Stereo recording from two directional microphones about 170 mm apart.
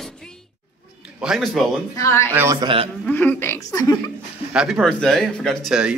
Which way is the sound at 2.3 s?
15° right (ahead or behind).